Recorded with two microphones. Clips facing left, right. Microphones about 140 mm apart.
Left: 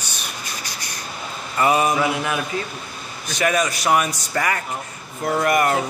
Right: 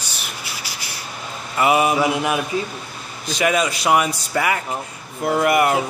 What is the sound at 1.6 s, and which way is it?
Speech, 15° right (ahead or behind).